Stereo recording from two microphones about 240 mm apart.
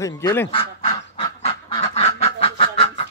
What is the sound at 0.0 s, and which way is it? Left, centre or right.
Speech, centre.